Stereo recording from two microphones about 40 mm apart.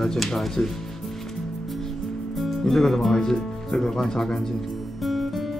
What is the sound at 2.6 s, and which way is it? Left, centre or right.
Speech, centre.